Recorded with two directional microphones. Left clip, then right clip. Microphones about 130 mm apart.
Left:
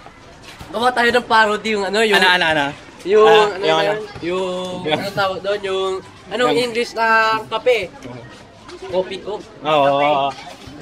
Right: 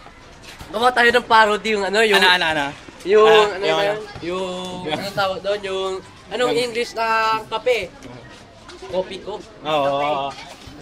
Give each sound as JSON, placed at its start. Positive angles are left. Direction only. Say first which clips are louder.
{"t": 0.7, "sound": "a man's voice", "louder": "even", "side_deg": -10}
{"t": 1.4, "sound": "speech", "louder": "even", "side_deg": -20}
{"t": 1.8, "sound": "speech", "louder": "left 1 dB", "side_deg": 0}
{"t": 2.1, "sound": "speech", "louder": "left 4 dB", "side_deg": 60}
{"t": 3.1, "sound": "a man's voice", "louder": "left 1 dB", "side_deg": -5}
{"t": 8.9, "sound": "a man's voice", "louder": "left 3 dB", "side_deg": 30}
{"t": 9.6, "sound": "speech", "louder": "left 5 dB", "side_deg": 60}